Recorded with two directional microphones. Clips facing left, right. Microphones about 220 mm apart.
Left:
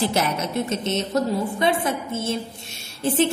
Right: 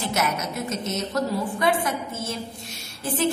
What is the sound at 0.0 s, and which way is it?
A woman's voice, 30° left (ahead or behind).